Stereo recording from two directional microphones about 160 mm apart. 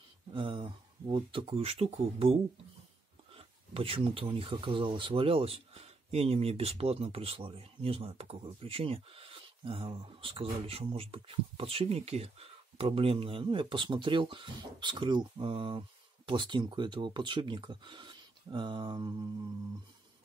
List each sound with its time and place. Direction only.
0.3 s speech: 35° right (ahead or behind)
3.3 s speech: 35° right (ahead or behind)